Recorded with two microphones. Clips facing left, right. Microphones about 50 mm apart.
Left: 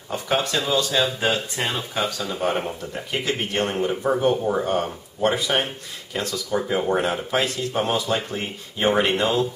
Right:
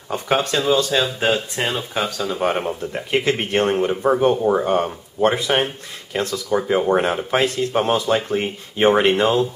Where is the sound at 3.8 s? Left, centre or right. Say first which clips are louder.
Right 4 dB; centre.